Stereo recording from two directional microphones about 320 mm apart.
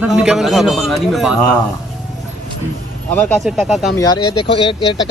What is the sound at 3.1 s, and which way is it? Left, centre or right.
Speech, centre.